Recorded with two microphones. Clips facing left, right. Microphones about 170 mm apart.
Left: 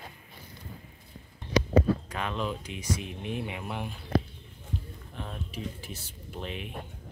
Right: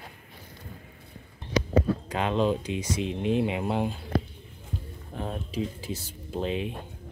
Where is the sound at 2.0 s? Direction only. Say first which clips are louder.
Right 7 dB; 25° right (ahead or behind).